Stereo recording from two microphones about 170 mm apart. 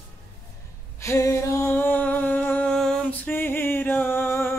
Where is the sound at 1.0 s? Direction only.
20° left (ahead or behind).